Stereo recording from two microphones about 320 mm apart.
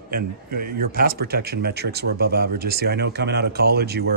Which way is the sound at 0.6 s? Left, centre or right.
Right.